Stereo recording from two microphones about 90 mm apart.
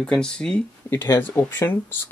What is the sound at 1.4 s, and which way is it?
Speech, 30° left (ahead or behind).